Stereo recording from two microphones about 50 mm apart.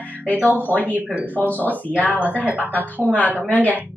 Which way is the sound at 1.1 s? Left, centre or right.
Right.